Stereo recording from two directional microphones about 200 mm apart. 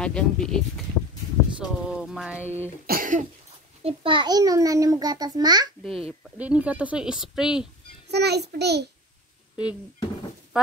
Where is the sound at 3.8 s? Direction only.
25° right (ahead or behind).